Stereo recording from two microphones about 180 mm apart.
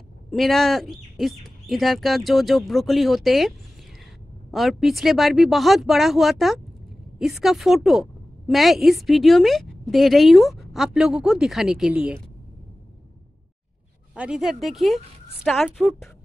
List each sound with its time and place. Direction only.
0.3 s a woman's voice: centre (ahead or behind)
14.1 s a woman's voice: 5° right (ahead or behind)